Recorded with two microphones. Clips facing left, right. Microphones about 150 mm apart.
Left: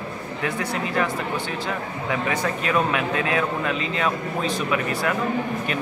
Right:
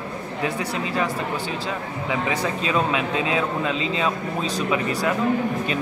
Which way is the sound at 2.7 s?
20° right (ahead or behind).